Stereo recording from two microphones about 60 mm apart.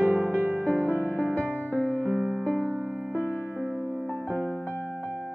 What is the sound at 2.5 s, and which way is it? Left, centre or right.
Music, left.